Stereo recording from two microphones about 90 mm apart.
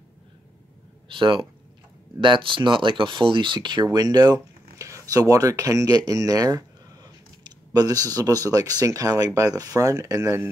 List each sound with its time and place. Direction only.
1.0 s speech: 70° right (ahead or behind); by 10.5 s 30° right (ahead or behind)